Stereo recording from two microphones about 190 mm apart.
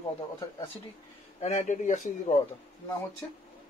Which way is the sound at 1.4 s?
35° left (ahead or behind).